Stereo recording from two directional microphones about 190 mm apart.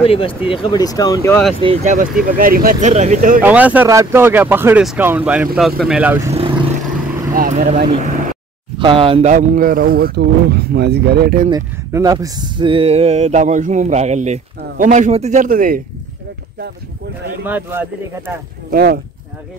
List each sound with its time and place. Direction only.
0.0 s speech: 30° left (ahead or behind)
1.6 s speech: 35° right (ahead or behind)
2.9 s speech: 40° right (ahead or behind)
3.4 s speech: 10° right (ahead or behind)
7.3 s speech: 45° right (ahead or behind)
8.7 s speech: 25° right (ahead or behind); by 11.4 s 55° right (ahead or behind)
11.5 s speech: 20° right (ahead or behind); by 15.8 s 45° right (ahead or behind)
17.4 s speech: 10° right (ahead or behind)
18.7 s speech: 50° right (ahead or behind)